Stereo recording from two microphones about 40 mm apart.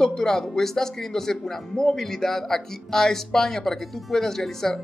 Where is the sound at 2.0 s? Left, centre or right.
Centre.